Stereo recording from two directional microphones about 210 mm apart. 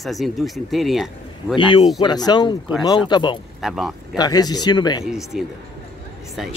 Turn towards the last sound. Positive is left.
turn(degrees=0)  # may be behind; listen again after turning